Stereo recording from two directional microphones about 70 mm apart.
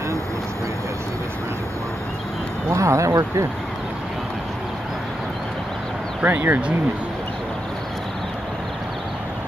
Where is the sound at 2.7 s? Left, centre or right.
Right.